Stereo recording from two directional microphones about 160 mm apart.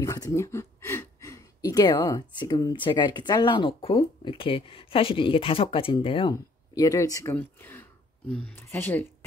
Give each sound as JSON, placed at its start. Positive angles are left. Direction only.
{"t": 0.0, "sound": "speech", "side_deg": 20}
{"t": 6.7, "sound": "speech", "side_deg": 20}